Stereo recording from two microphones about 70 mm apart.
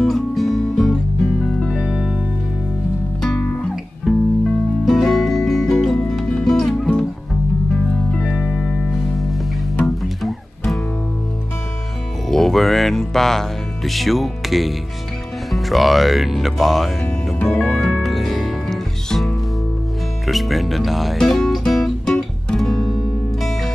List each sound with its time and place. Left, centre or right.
0.0 s music: centre
1.8 s music: centre
3.2 s music: centre
3.6 s music: centre
8.2 s music: centre
10.0 s music: centre
12.3 s music: centre
15.5 s speech: centre
17.5 s music: centre